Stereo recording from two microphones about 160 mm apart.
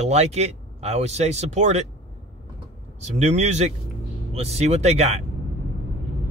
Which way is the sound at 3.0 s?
45° right (ahead or behind).